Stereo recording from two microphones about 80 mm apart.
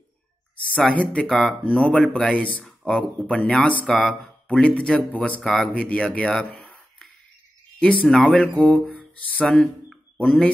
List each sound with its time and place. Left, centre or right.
0.7 s speech: centre
1.2 s speech: centre
5.4 s speech: centre
5.7 s speech: centre
6.5 s a sound: centre
7.8 s speech: centre
8.3 s speech: centre